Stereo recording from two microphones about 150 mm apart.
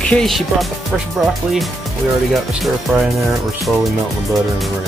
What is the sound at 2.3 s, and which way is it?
Speech, centre (ahead or behind).